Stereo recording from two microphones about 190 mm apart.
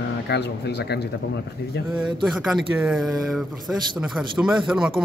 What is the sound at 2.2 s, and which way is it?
Speech, centre (ahead or behind).